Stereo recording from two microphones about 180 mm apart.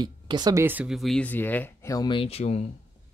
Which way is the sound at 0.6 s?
10° right (ahead or behind).